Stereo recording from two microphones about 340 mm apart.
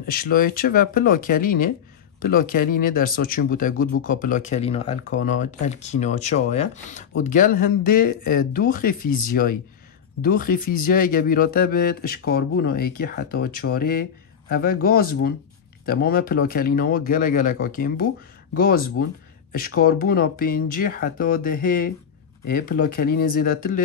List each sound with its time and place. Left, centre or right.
0.0 s speech: left